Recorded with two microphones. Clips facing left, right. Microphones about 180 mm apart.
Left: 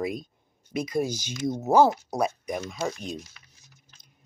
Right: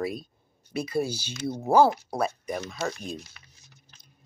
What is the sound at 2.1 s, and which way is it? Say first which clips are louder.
Speech: left 1 dB; 15° left (ahead or behind).